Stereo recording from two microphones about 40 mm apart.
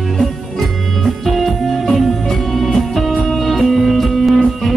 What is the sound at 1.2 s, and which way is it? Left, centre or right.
Music, centre.